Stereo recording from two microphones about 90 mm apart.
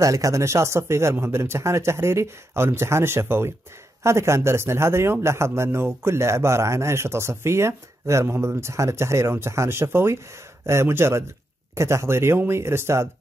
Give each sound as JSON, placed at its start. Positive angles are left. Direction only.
{"t": 0.0, "sound": "speech", "side_deg": -35}